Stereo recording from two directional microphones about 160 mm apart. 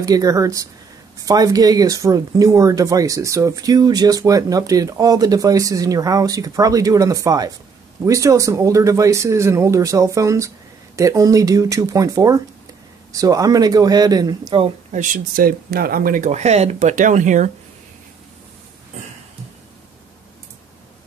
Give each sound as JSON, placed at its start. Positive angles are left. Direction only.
{"t": 0.0, "sound": "speech", "side_deg": -20}
{"t": 14.9, "sound": "speech", "side_deg": -50}